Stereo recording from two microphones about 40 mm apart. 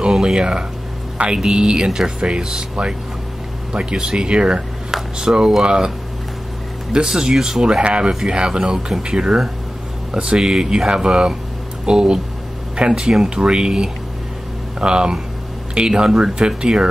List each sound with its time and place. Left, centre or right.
0.0 s speech: centre
7.1 s speech: centre
7.6 s speech: right